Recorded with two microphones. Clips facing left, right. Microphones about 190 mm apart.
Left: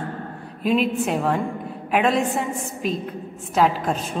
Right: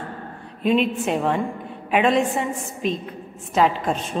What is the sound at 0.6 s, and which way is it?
A woman's voice, 5° left (ahead or behind).